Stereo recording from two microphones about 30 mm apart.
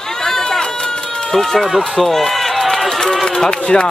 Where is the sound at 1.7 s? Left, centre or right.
Centre.